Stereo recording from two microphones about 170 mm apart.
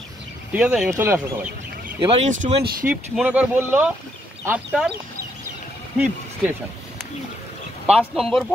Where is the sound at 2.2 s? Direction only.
45° right (ahead or behind).